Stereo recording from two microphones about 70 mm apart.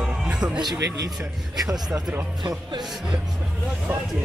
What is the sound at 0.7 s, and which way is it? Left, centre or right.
Speech, right.